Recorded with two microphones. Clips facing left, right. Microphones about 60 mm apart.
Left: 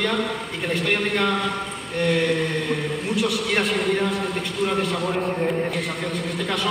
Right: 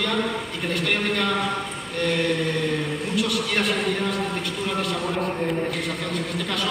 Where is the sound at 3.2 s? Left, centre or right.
Centre.